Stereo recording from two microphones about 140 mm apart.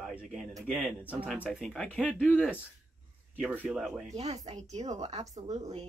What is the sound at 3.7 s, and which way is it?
Speech, centre (ahead or behind).